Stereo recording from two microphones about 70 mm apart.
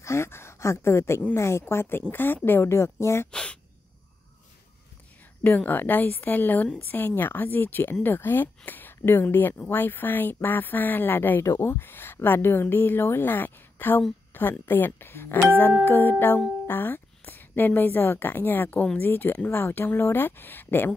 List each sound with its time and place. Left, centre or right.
0.0 s speech: left
3.3 s a sound: centre
5.4 s a woman's voice: left